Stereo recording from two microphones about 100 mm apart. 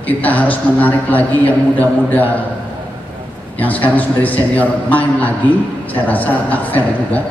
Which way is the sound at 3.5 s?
15° left (ahead or behind).